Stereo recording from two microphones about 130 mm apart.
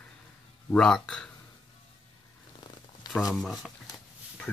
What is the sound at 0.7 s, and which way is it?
Speech, 5° left (ahead or behind).